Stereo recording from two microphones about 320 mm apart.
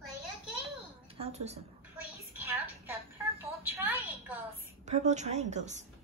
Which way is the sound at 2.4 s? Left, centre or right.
Centre.